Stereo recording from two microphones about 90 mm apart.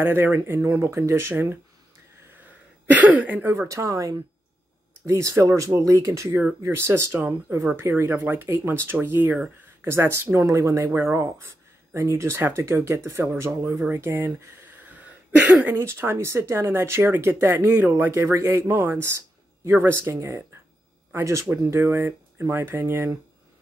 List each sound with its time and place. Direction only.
0.0 s speech: 25° right (ahead or behind)
2.9 s speech: 15° right (ahead or behind)
3.6 s speech: 35° right (ahead or behind)
18.7 s speech: 25° right (ahead or behind)